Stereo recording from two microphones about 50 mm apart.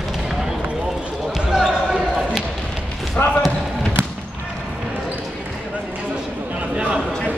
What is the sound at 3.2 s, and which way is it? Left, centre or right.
Basketball bounce, left.